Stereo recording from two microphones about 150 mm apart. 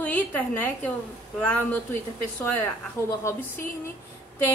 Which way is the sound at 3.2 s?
15° left (ahead or behind).